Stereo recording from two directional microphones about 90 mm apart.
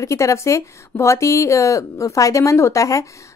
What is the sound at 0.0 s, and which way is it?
Speech, 35° left (ahead or behind).